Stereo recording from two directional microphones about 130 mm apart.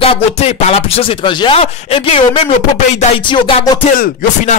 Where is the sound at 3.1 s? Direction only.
40° left (ahead or behind).